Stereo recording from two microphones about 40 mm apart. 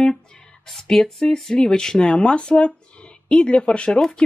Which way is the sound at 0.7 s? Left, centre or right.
Centre.